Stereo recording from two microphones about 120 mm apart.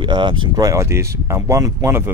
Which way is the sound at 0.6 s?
25° right (ahead or behind).